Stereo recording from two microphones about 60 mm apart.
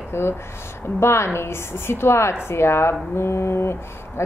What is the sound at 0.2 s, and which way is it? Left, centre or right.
A woman's voice, left.